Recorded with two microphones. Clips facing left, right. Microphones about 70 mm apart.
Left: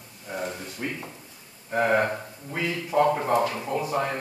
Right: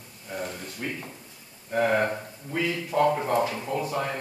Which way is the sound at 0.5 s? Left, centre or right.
Centre.